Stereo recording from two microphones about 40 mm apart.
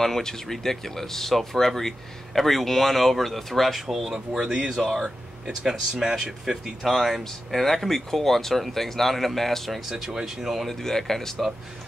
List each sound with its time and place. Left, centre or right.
0.0 s speech: centre
4.5 s speech: centre
6.8 s speech: centre
7.5 s speech: centre
9.8 s speech: centre
10.7 s speech: centre